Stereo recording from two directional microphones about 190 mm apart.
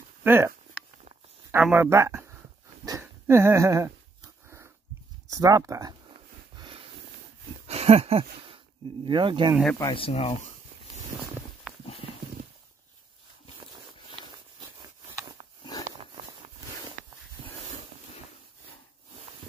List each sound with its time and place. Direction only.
0.2 s speech: 10° right (ahead or behind)
1.5 s speech: 10° right (ahead or behind)
2.8 s a sound: 15° right (ahead or behind)
5.3 s speech: 15° right (ahead or behind)
6.5 s a sound: 25° right (ahead or behind)
9.0 s speech: 25° right (ahead or behind)
9.8 s speech: 25° left (ahead or behind)
11.7 s horse: 5° right (ahead or behind)
14.8 s a sound: 20° right (ahead or behind)